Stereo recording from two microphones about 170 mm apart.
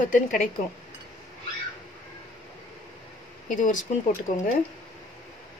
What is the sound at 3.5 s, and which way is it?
Speech, 50° left (ahead or behind).